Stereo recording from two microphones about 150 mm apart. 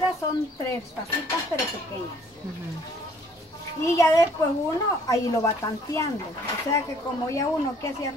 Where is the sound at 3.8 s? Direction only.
20° left (ahead or behind).